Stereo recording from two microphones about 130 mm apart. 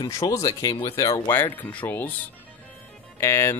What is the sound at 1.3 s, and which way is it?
Speech, 15° left (ahead or behind).